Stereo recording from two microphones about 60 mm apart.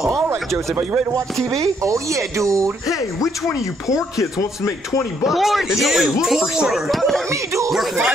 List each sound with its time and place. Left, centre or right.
0.1 s a sound: right
1.8 s speech: right
3.9 s speech: left
5.2 s speech: centre
7.2 s speech: right
7.7 s speech: centre